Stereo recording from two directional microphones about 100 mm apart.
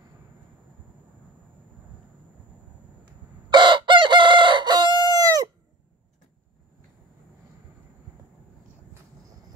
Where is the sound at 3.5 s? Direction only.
50° right (ahead or behind).